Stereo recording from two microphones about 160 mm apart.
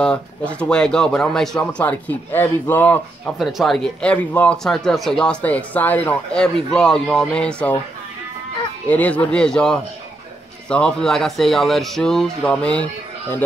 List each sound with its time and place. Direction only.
0.0 s speech: 5° left (ahead or behind)
3.3 s speech: centre (ahead or behind)
8.8 s speech: 10° left (ahead or behind)